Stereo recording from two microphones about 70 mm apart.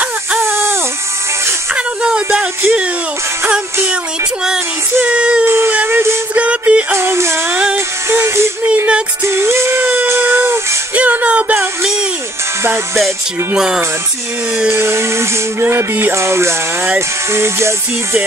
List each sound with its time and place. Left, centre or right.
0.5 s music: right
1.7 s a sound: centre
5.0 s a sound: centre
5.7 s a sound: right
6.3 s music: centre
6.9 s music: right
8.6 s music: centre
9.3 s music: right
11.0 s music: right
12.6 s music: right
14.7 s music: right
15.6 s music: right